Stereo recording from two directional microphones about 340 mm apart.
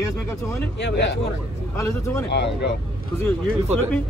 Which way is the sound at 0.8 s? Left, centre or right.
Left.